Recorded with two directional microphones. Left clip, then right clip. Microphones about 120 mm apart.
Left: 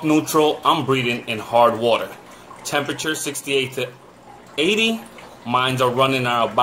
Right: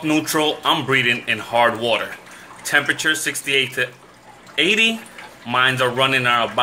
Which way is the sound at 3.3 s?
10° left (ahead or behind).